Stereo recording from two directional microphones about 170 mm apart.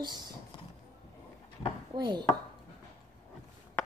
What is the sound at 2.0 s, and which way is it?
Chopping, 25° right (ahead or behind).